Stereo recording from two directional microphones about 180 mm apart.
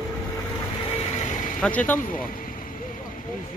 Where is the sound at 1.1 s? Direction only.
45° left (ahead or behind).